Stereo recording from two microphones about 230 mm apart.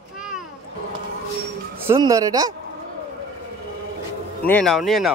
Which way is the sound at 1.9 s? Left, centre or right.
Centre.